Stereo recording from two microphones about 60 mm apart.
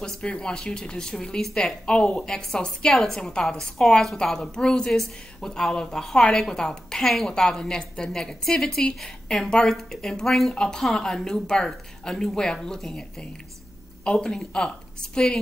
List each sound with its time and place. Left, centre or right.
0.0 s a woman's voice: centre